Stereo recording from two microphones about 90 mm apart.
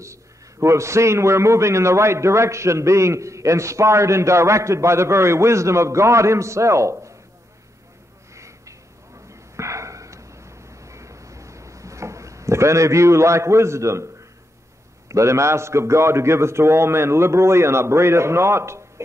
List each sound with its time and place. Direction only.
0.0 s a man's voice: 35° right (ahead or behind)
8.4 s a sound: 35° right (ahead or behind)
15.0 s a man's voice: 35° right (ahead or behind)